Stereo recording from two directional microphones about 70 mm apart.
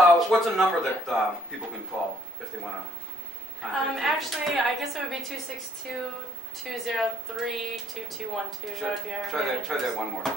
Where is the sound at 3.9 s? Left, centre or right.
Centre.